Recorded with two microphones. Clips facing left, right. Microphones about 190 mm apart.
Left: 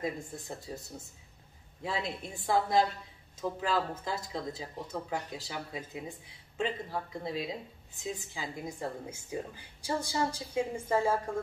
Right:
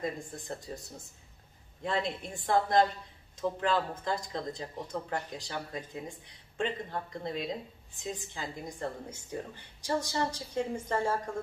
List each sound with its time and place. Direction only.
0.0 s a woman's voice: 5° left (ahead or behind)